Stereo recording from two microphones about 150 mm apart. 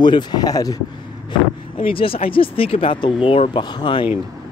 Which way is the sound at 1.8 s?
40° left (ahead or behind).